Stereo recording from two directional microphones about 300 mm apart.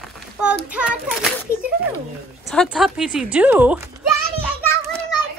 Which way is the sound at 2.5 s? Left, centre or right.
Centre.